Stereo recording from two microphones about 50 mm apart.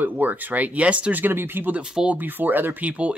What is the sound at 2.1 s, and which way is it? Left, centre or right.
Speech, right.